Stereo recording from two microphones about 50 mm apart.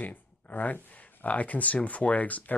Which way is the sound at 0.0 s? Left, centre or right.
Left.